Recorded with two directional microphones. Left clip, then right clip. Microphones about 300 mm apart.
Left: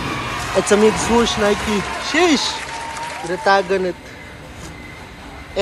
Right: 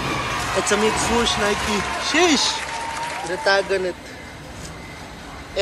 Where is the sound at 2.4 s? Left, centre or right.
Centre.